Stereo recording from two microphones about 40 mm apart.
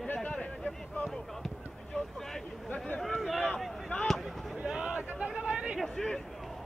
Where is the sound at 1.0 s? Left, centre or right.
Centre.